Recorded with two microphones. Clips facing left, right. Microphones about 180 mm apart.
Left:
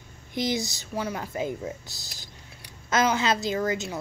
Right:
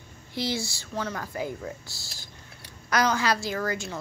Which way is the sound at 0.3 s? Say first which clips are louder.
Left 3 dB; 20° left (ahead or behind).